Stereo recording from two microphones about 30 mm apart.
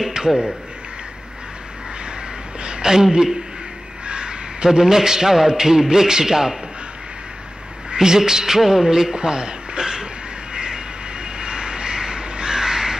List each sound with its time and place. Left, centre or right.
2.6 s a sound: right
2.9 s a man's voice: right
4.0 s crow: right
4.6 s a man's voice: centre
7.9 s a man's voice: right
10.5 s vehicle: right